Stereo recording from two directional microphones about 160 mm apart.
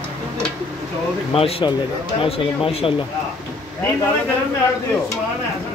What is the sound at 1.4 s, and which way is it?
Speech, 35° left (ahead or behind).